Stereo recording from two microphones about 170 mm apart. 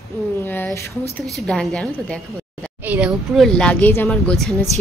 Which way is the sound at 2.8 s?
5° right (ahead or behind).